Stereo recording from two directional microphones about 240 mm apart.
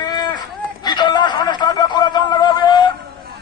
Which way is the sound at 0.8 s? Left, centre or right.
Centre.